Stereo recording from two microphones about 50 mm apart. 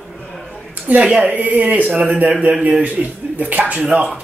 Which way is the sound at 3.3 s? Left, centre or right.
Right.